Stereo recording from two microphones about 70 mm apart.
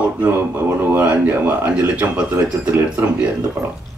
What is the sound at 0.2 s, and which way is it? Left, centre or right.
A man's voice, right.